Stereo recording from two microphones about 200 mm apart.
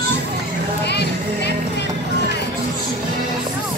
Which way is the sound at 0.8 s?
55° left (ahead or behind).